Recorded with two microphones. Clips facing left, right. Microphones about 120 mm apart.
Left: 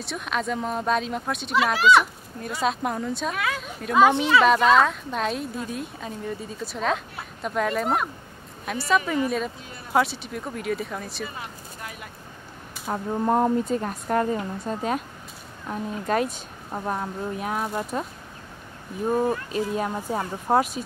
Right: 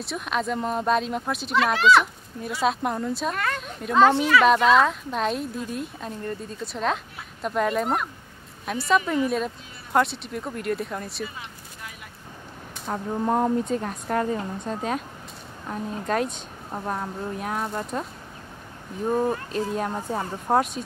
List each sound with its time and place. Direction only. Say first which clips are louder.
0.0 s speech: right 1 dB; centre (ahead or behind)
11.2 s a sound: left 2 dB; 50° left (ahead or behind)
12.8 s speech: left 1 dB; 5° left (ahead or behind)
19.0 s speech: even; 5° left (ahead or behind)